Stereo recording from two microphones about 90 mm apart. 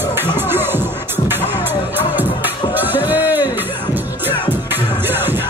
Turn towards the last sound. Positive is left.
turn(degrees=-25)  # may be behind; listen again after turning